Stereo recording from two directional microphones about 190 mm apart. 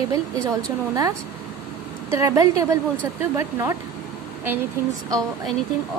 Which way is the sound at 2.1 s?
15° right (ahead or behind).